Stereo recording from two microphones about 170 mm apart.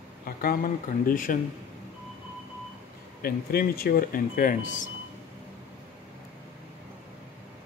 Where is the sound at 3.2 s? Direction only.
60° left (ahead or behind).